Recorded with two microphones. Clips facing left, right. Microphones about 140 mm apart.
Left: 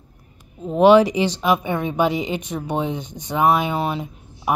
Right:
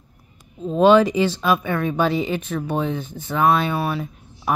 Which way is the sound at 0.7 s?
15° left (ahead or behind).